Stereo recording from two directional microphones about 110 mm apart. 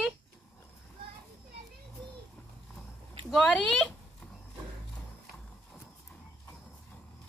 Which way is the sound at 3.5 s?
10° left (ahead or behind).